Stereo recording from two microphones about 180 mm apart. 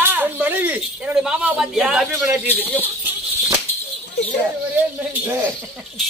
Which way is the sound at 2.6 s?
10° left (ahead or behind).